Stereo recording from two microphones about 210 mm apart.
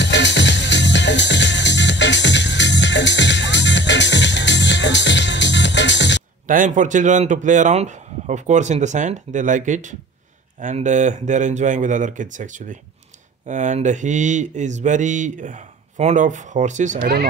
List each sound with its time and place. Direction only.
0.0 s music: 60° left (ahead or behind)
6.4 s speech: 40° right (ahead or behind)